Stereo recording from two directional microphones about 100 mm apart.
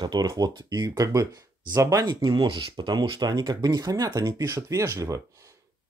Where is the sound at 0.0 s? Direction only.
45° right (ahead or behind).